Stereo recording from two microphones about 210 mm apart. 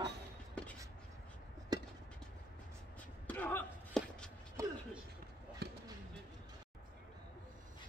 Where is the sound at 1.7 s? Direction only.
20° right (ahead or behind).